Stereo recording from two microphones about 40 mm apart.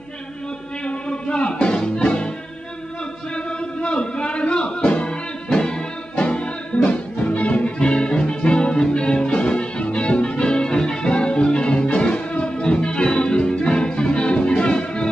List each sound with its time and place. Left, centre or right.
0.8 s music: left
3.3 s music: left